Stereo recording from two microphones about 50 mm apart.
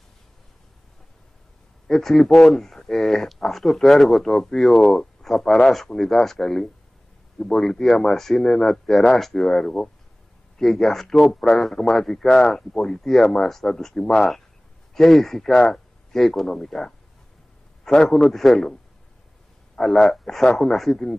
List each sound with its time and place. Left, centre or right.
1.9 s a man's voice: centre
20.0 s speech: centre